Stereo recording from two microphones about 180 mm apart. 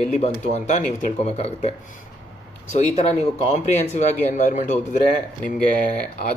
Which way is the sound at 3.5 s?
40° left (ahead or behind).